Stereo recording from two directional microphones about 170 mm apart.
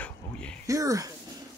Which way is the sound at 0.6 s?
20° right (ahead or behind).